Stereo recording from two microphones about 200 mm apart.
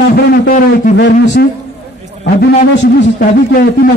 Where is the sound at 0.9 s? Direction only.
60° left (ahead or behind).